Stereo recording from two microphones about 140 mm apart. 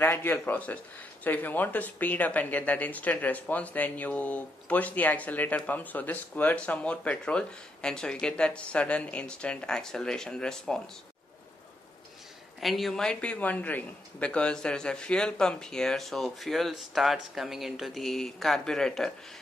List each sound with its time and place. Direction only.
0.0 s speech: 15° left (ahead or behind)
12.5 s speech: centre (ahead or behind)